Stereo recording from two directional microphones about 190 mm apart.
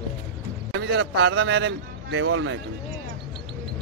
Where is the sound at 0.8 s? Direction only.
75° right (ahead or behind); by 2.5 s 90° right.